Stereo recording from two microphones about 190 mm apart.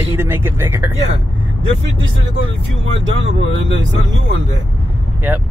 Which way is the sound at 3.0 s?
75° right (ahead or behind).